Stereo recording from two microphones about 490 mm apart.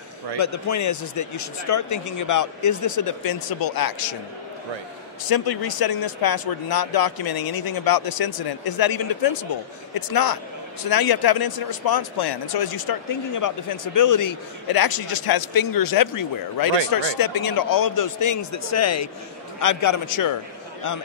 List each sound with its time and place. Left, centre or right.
0.4 s speech: left
5.3 s a man's voice: left